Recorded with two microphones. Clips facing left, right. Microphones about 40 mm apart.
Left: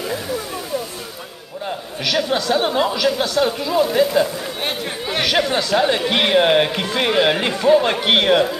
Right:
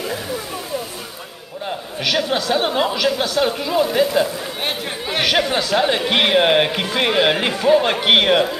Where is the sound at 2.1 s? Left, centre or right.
Centre.